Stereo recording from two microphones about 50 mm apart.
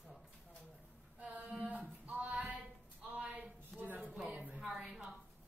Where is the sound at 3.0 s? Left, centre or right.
Right.